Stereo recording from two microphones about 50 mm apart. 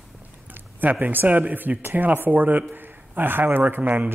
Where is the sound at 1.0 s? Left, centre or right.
Right.